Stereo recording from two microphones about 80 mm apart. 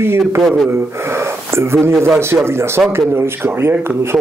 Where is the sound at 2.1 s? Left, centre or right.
Right.